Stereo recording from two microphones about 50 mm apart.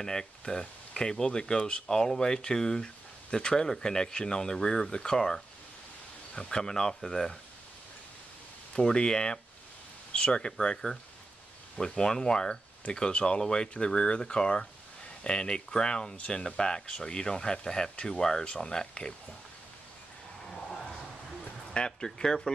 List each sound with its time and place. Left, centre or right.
0.0 s speech: centre
8.7 s speech: centre
21.7 s speech: centre